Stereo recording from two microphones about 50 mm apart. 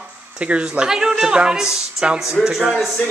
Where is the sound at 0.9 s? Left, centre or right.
Centre.